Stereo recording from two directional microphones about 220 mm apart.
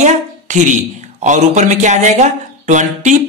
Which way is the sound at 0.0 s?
35° right (ahead or behind).